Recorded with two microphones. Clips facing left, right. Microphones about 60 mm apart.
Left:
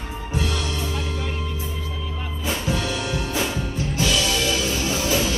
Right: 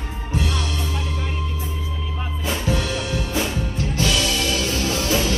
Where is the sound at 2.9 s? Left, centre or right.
Centre.